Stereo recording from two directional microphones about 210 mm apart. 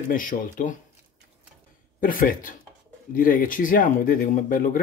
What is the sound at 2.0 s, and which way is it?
Speech, 40° left (ahead or behind).